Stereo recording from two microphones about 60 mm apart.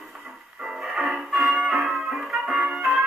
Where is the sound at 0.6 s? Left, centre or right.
Centre.